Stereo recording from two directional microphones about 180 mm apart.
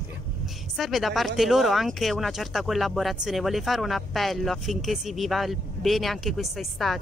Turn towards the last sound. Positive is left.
turn(degrees=0)  # may be behind; listen again after turning